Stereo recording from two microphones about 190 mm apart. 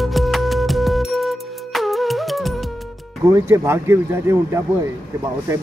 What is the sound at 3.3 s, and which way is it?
Speech, 15° right (ahead or behind).